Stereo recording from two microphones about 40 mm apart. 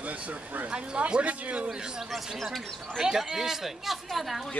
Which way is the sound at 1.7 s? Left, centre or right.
Centre.